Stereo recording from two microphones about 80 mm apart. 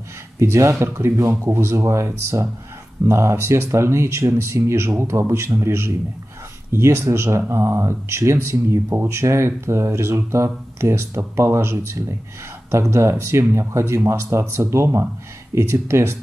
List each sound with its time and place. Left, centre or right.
0.4 s speech: right
13.2 s speech: right